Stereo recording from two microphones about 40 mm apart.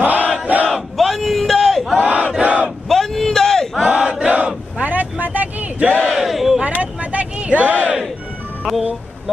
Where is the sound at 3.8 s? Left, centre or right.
Right.